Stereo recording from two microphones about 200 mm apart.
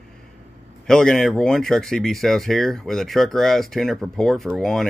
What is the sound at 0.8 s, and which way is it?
Speech, 5° left (ahead or behind).